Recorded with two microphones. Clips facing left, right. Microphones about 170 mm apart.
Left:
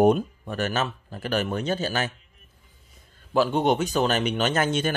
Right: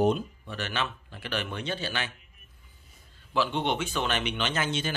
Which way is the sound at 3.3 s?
45° left (ahead or behind).